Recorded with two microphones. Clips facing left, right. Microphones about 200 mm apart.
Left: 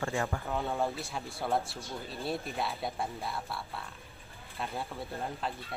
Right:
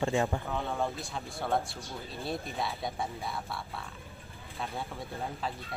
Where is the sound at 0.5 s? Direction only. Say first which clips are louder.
Left 1 dB; centre (ahead or behind).